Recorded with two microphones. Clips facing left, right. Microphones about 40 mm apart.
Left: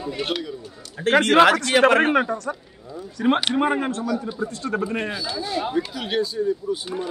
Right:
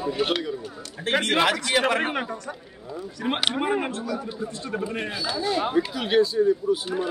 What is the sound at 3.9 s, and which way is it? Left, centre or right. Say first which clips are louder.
Speech: left 4 dB; centre.